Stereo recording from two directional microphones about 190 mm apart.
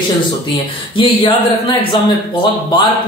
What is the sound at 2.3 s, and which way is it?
Speech, 25° left (ahead or behind).